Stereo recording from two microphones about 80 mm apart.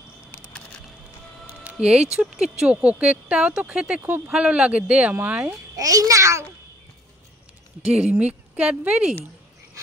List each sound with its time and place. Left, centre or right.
1.5 s speech: centre
5.8 s a child's voice: right
7.8 s speech: centre